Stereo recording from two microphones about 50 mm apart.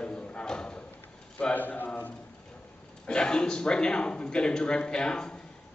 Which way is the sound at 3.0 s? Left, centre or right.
Centre.